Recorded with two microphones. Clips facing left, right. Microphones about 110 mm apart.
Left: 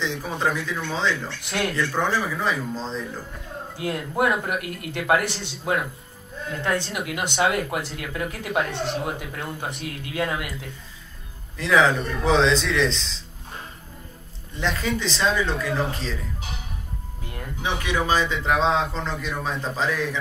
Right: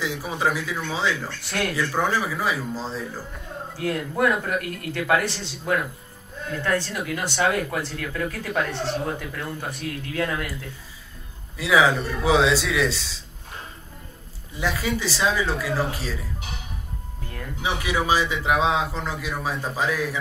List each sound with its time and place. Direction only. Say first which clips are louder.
0.0 s a man's voice: even; 5° right (ahead or behind)
4.2 s a man's voice: even; 20° left (ahead or behind)
11.5 s speech: even; 5° right (ahead or behind)
14.5 s a man's voice: even; 5° right (ahead or behind)
17.6 s a man's voice: even; 10° right (ahead or behind)